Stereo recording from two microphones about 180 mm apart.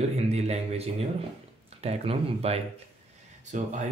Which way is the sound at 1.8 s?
35° right (ahead or behind).